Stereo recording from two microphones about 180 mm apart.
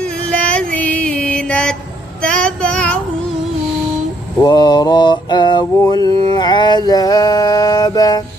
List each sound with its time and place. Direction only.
0.0 s music: 5° left (ahead or behind)
2.2 s child singing: 5° left (ahead or behind)
4.4 s mantra: 25° left (ahead or behind)